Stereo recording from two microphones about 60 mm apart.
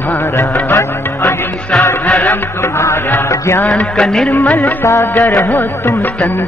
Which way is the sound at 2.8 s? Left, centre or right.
Left.